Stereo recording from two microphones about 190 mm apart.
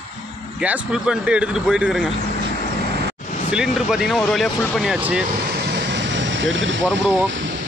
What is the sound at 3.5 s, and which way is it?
Speech, 5° right (ahead or behind).